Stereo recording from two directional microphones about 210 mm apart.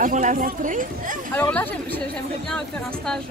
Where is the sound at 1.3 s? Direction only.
5° left (ahead or behind).